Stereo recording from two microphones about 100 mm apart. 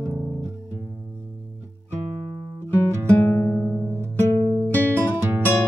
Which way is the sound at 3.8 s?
25° right (ahead or behind).